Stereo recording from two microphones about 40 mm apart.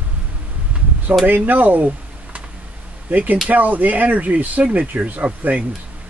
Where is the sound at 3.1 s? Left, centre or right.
Right.